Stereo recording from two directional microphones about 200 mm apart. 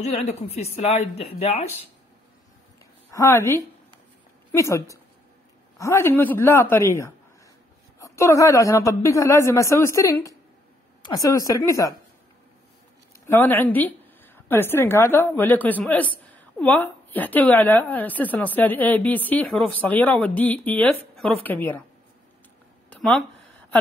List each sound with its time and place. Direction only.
0.0 s speech: 35° left (ahead or behind)
3.1 s a woman's voice: 15° left (ahead or behind)
13.3 s a woman's voice: 10° left (ahead or behind)
22.8 s a sound: centre (ahead or behind)